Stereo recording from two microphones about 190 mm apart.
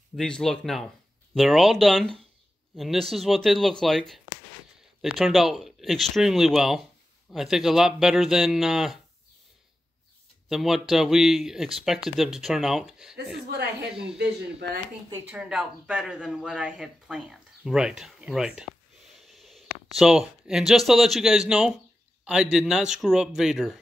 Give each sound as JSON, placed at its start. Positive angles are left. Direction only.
{"t": 0.1, "sound": "speech", "side_deg": 0}
{"t": 5.1, "sound": "speech", "side_deg": 0}
{"t": 10.5, "sound": "speech", "side_deg": 0}
{"t": 14.1, "sound": "speech", "side_deg": -60}
{"t": 15.2, "sound": "speech", "side_deg": -5}
{"t": 19.1, "sound": "sniff", "side_deg": 0}
{"t": 20.0, "sound": "speech", "side_deg": 0}